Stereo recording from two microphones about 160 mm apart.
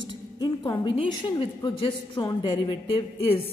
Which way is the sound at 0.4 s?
30° left (ahead or behind).